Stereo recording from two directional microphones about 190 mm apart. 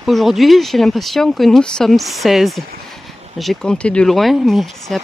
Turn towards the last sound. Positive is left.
turn(degrees=0)  # may be behind; listen again after turning